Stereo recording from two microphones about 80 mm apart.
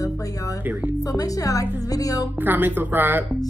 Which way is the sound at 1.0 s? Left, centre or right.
Left.